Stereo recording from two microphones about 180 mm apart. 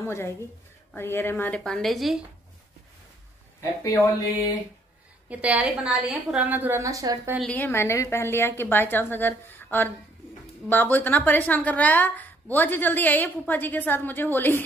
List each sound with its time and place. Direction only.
0.0 s a woman's voice: 15° left (ahead or behind)
3.8 s a woman's voice: 15° left (ahead or behind)
5.3 s a woman's voice: 5° right (ahead or behind)
7.3 s a woman's voice: 5° left (ahead or behind)